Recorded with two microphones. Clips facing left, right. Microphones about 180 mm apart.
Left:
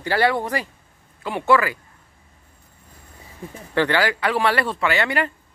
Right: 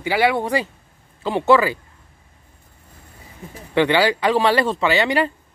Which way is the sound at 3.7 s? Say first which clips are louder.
Right 3 dB; 20° right (ahead or behind).